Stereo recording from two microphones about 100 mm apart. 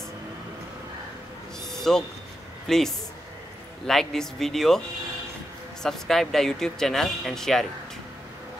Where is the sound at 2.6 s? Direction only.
5° left (ahead or behind).